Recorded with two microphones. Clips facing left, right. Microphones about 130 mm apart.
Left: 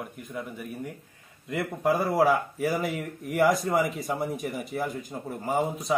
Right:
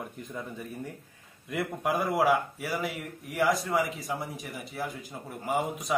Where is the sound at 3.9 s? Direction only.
Centre (ahead or behind).